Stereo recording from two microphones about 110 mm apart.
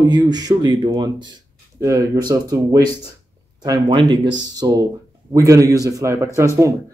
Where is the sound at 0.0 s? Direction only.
40° right (ahead or behind).